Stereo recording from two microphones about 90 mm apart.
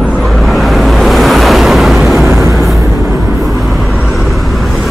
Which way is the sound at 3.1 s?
25° right (ahead or behind).